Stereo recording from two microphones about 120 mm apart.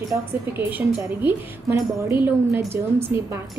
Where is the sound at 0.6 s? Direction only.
15° right (ahead or behind).